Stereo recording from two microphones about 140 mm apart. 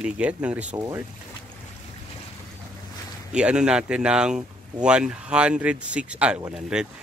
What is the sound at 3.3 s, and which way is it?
Speech, 5° right (ahead or behind).